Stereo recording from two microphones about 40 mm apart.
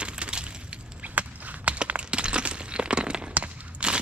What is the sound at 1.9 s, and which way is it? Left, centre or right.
Crack, right.